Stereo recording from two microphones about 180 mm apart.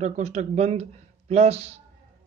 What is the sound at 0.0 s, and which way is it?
A man's voice, 40° right (ahead or behind).